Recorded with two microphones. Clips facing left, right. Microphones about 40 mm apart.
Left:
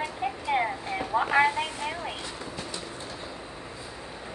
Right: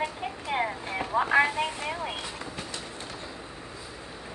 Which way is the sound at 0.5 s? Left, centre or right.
Centre.